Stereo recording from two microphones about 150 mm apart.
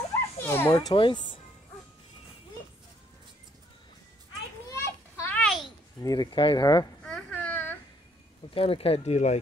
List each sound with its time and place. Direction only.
0.4 s dog: 15° left (ahead or behind)
0.7 s speech: 30° left (ahead or behind)
4.6 s children playing: 20° left (ahead or behind)
5.4 s a sound: centre (ahead or behind)
5.9 s speech: 25° left (ahead or behind)
7.1 s baby cry: 5° left (ahead or behind)
8.5 s speech: 40° left (ahead or behind)